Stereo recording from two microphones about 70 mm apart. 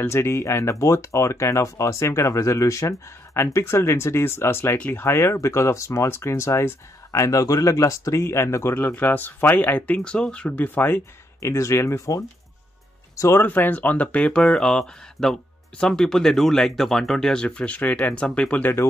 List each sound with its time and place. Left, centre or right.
0.1 s speech: left
8.8 s speech: left
10.6 s speech: left
11.4 s speech: left
13.4 s speech: left